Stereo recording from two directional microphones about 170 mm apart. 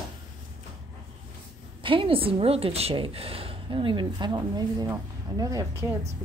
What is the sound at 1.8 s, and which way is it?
A woman's voice, 30° right (ahead or behind).